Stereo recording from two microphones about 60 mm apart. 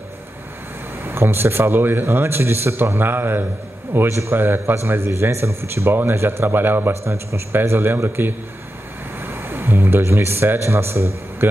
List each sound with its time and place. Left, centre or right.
1.0 s speech: right
4.1 s a man's voice: right
4.4 s speech: right
7.1 s a man's voice: right
7.5 s speech: right
9.2 s speech: right